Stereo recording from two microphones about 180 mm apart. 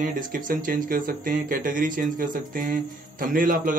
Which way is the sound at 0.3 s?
50° right (ahead or behind).